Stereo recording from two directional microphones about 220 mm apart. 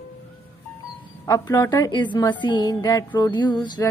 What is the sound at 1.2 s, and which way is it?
A woman's voice, 15° left (ahead or behind).